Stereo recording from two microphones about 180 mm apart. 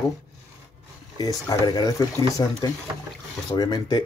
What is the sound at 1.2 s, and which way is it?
Speech, 20° left (ahead or behind).